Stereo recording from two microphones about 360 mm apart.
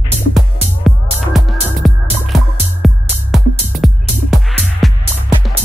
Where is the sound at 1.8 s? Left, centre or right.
Centre.